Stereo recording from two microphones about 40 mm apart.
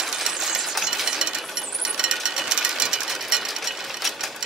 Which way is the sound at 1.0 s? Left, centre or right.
Centre.